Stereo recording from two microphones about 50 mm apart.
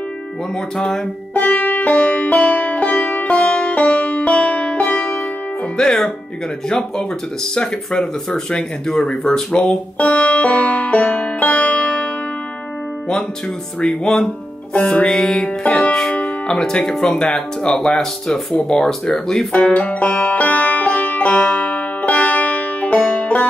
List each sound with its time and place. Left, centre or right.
0.7 s music: left
5.8 s speech: centre
7.5 s speech: centre
9.9 s music: left
13.7 s speech: centre
15.7 s music: centre
16.5 s speech: centre
17.2 s speech: left
17.7 s speech: centre
19.5 s music: left